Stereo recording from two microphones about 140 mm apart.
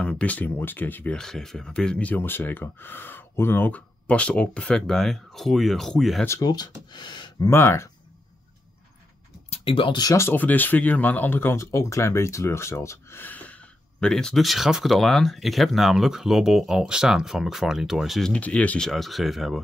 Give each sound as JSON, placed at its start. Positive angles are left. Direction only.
{"t": 0.0, "sound": "speech", "side_deg": 10}
{"t": 6.2, "sound": "speech", "side_deg": 25}
{"t": 7.4, "sound": "speech", "side_deg": 15}
{"t": 9.5, "sound": "speech", "side_deg": 40}